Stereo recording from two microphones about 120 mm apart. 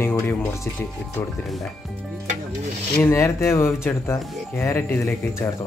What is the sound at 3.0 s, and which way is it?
Speech, 25° left (ahead or behind).